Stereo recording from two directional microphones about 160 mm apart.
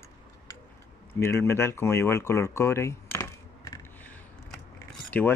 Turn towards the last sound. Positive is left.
turn(degrees=10)  # may be behind; listen again after turning